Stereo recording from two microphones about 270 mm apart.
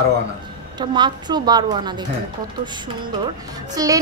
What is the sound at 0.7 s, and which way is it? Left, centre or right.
A woman's voice, centre.